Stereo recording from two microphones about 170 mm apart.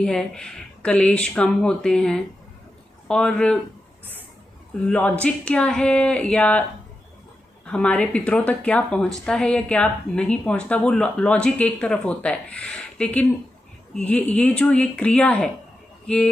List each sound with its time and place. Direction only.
0.0 s speech: 5° left (ahead or behind)
4.8 s a woman's voice: 10° left (ahead or behind)
7.6 s a woman's voice: 5° left (ahead or behind)